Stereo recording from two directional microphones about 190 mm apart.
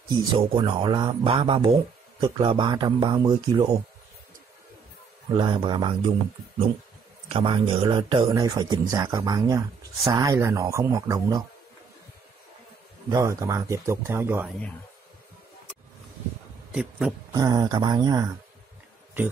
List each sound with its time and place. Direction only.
0.1 s speech: 25° right (ahead or behind)
5.3 s speech: 25° right (ahead or behind)
7.2 s speech: 25° right (ahead or behind)
13.1 s speech: 15° right (ahead or behind)
17.3 s speech: 20° right (ahead or behind)